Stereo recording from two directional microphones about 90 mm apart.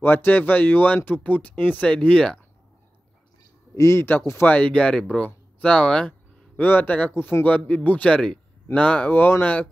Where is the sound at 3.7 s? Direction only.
30° left (ahead or behind).